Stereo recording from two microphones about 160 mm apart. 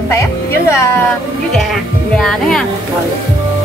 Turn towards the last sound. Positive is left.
turn(degrees=5)  # may be behind; listen again after turning